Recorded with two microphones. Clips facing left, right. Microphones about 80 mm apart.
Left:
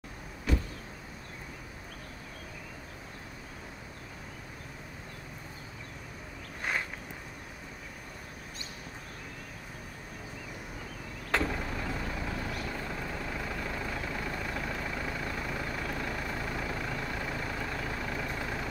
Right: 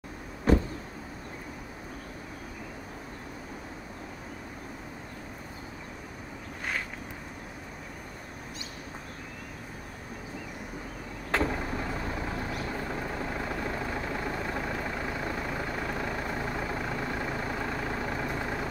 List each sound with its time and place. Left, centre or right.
0.5 s vehicle: right
11.3 s vehicle: right